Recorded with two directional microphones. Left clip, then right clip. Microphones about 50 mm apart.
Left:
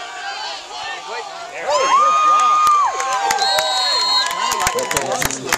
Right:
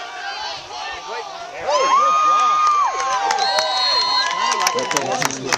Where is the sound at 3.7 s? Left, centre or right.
Centre.